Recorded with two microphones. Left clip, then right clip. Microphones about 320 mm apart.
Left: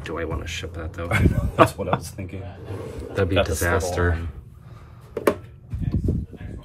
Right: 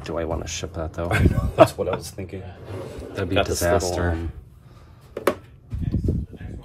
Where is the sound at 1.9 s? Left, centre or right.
Centre.